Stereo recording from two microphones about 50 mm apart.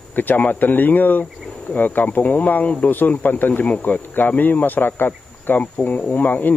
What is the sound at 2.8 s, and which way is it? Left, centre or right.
Speech, left.